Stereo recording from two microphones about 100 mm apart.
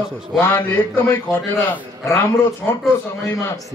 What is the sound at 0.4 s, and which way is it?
Speech, 20° left (ahead or behind).